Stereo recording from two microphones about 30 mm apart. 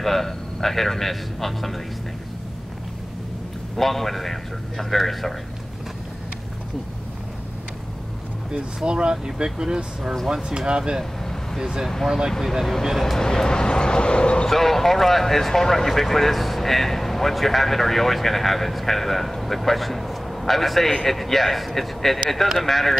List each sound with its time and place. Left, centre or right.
0.0 s a man's voice: centre
3.7 s a man's voice: centre
8.8 s speech: right
12.3 s speech: centre
13.2 s speech: left
14.5 s speech: centre